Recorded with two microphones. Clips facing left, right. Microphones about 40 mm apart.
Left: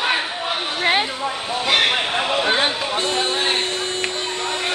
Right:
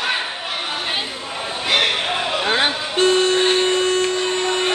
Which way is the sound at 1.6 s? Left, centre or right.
Centre.